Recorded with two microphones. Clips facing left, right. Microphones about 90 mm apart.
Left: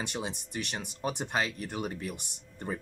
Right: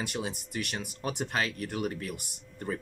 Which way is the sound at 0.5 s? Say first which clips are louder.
Right 1 dB; 25° left (ahead or behind).